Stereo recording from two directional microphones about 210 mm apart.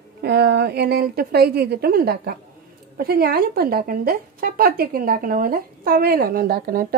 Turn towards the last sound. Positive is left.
turn(degrees=-45)  # may be behind; listen again after turning